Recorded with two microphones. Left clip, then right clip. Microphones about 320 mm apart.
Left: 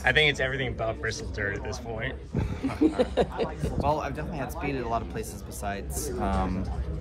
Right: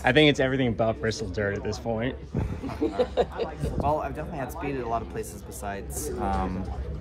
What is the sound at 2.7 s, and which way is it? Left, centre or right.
Speech, left.